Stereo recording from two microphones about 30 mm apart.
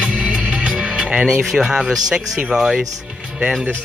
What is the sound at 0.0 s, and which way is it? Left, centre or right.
Music, right.